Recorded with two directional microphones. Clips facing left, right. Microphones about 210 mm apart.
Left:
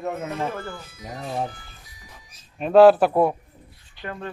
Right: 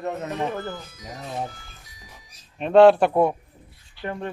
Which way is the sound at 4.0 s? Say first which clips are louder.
Right 3 dB; 20° left (ahead or behind).